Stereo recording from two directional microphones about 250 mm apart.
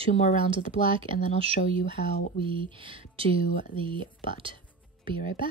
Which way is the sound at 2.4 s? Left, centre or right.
Right.